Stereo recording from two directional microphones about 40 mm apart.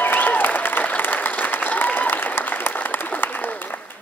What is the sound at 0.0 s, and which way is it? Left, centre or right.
Applause, left.